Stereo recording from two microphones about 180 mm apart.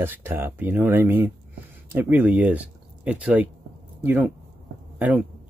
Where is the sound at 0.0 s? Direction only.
10° right (ahead or behind).